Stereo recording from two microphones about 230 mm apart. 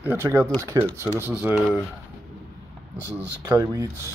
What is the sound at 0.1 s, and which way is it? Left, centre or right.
Speech, centre.